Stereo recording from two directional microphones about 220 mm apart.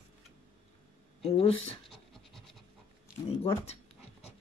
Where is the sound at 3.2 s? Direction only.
25° left (ahead or behind).